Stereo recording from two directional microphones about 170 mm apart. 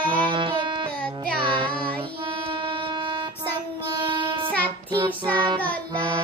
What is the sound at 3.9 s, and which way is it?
Child singing, 30° right (ahead or behind).